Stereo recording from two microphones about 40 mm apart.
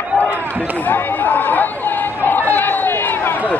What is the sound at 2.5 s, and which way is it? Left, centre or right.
Run, left.